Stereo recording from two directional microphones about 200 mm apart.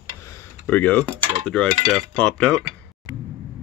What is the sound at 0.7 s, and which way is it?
Speech, 10° left (ahead or behind).